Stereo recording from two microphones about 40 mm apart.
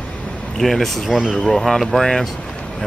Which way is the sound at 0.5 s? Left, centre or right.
Centre.